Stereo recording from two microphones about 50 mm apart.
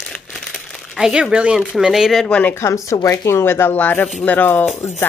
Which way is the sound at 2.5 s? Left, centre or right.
Left.